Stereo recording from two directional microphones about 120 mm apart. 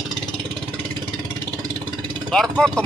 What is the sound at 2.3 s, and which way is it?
Vehicle, 5° left (ahead or behind).